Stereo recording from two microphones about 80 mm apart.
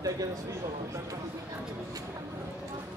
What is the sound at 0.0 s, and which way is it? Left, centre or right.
Speech, right.